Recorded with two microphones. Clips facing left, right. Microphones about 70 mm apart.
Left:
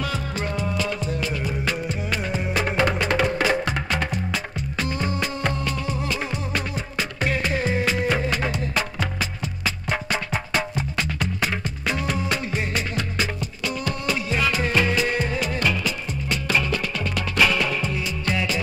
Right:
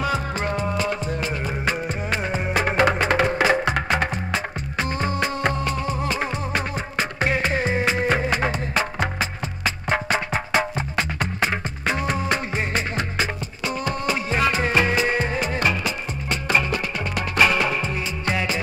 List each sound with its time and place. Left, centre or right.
0.0 s music: right
3.7 s music: right
9.8 s music: right